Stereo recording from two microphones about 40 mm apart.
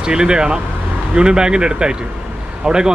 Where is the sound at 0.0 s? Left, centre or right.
Centre.